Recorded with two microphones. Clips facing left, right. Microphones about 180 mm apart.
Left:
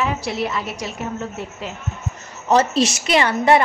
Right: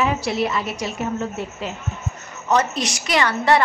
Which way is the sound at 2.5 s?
25° left (ahead or behind).